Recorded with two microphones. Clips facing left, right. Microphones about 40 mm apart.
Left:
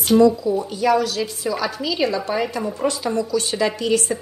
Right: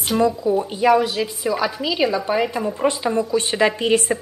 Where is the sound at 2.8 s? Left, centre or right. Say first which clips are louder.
Right 2 dB; right.